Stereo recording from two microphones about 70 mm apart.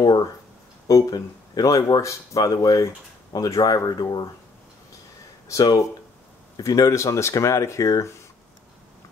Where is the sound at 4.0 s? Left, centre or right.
Left.